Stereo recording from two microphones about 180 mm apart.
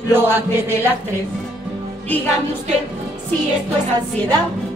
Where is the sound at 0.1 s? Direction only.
10° right (ahead or behind).